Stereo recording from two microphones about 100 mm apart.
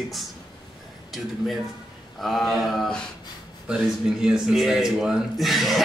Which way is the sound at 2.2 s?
Centre (ahead or behind).